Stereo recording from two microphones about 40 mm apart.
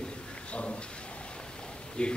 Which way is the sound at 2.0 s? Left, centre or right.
Left.